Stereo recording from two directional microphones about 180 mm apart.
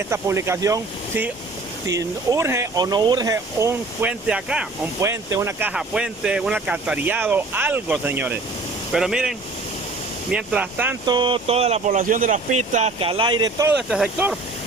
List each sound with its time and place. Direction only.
0.1 s speech: 15° right (ahead or behind)
10.3 s speech: 5° right (ahead or behind)
11.1 s speech: 25° right (ahead or behind)
13.7 s speech: 5° right (ahead or behind)